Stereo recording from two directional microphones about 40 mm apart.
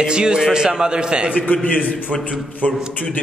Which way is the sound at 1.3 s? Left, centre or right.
Left.